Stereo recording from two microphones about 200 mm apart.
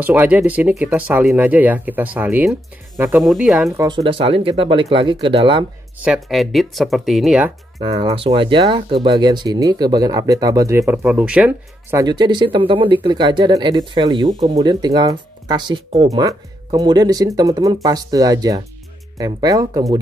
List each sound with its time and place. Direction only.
0.0 s speech: 10° right (ahead or behind)
3.8 s speech: 20° right (ahead or behind)
6.0 s speech: centre (ahead or behind)
7.8 s speech: 25° right (ahead or behind)